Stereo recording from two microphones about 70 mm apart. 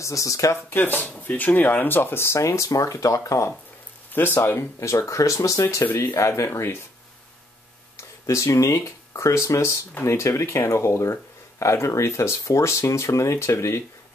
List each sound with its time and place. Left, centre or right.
0.0 s speech: left
0.7 s speech: left
4.1 s speech: left
4.4 s speech: left
8.3 s speech: left